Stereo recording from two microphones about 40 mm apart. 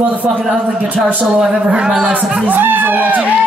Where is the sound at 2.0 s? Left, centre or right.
Right.